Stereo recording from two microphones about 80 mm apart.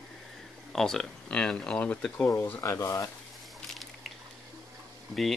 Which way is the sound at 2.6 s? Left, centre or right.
Left.